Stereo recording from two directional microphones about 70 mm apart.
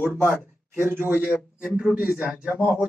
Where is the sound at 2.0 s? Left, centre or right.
Centre.